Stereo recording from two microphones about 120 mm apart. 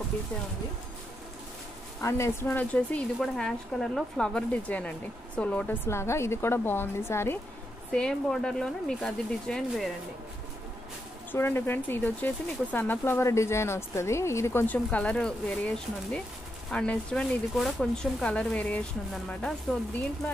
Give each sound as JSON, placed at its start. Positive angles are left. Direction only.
{"t": 2.0, "sound": "a woman's voice", "side_deg": 25}
{"t": 5.9, "sound": "a woman's voice", "side_deg": 20}
{"t": 7.9, "sound": "speech", "side_deg": 5}
{"t": 11.3, "sound": "a woman's voice", "side_deg": 20}